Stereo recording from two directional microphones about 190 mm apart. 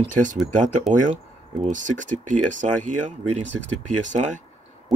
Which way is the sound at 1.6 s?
40° right (ahead or behind).